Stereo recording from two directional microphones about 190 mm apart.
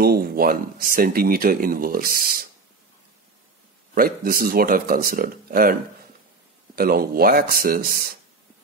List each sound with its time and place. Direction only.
0.0 s speech: 50° right (ahead or behind)
3.9 s speech: 50° right (ahead or behind)